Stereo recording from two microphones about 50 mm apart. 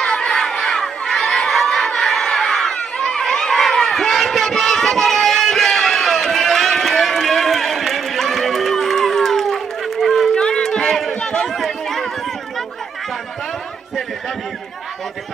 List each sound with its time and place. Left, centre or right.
0.0 s crowd: centre
3.2 s a sound: centre
10.3 s a sound: centre
10.6 s run: centre
11.1 s chatter: centre
11.4 s chatter: centre